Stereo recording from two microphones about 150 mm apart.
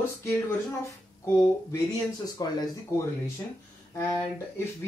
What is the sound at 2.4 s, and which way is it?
Speech, 25° left (ahead or behind).